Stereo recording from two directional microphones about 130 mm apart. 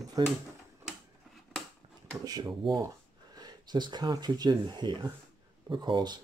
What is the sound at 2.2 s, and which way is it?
Speech, 30° right (ahead or behind).